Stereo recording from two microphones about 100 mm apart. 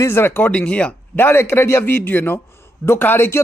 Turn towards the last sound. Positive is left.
turn(degrees=25)  # may be behind; listen again after turning